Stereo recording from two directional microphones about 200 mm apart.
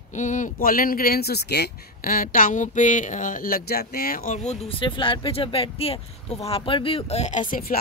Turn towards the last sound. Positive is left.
turn(degrees=45)  # may be behind; listen again after turning